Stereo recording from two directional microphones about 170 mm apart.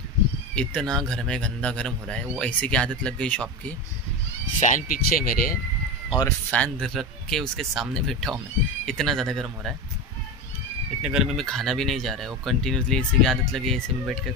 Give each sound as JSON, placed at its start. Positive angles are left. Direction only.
{"t": 0.6, "sound": "speech", "side_deg": 5}
{"t": 4.6, "sound": "speech", "side_deg": 45}
{"t": 6.5, "sound": "speech", "side_deg": 5}
{"t": 11.0, "sound": "speech", "side_deg": -5}